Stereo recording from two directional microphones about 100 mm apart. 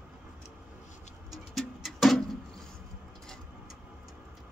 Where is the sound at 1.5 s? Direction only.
Centre (ahead or behind).